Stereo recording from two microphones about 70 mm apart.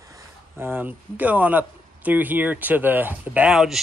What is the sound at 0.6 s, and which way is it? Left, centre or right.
Speech, right.